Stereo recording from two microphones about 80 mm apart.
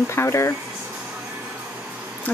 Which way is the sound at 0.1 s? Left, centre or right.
Left.